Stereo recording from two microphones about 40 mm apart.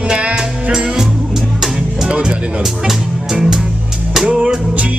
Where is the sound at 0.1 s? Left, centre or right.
Right.